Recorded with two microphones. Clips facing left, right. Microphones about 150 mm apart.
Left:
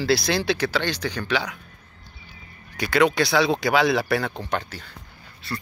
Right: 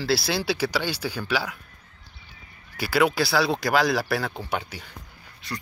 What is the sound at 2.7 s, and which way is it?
Speech, 5° right (ahead or behind).